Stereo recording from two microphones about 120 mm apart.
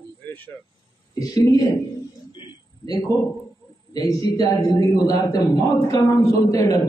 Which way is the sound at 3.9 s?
30° left (ahead or behind).